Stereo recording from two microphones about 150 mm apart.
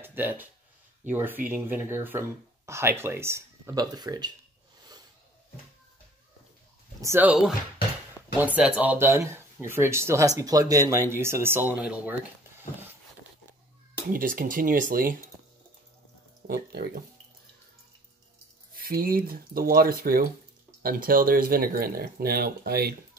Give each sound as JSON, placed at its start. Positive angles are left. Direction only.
{"t": 0.0, "sound": "speech", "side_deg": -15}
{"t": 7.0, "sound": "speech", "side_deg": -15}
{"t": 8.4, "sound": "speech", "side_deg": -10}
{"t": 14.1, "sound": "speech", "side_deg": -65}
{"t": 16.4, "sound": "speech", "side_deg": -85}
{"t": 18.8, "sound": "speech", "side_deg": -75}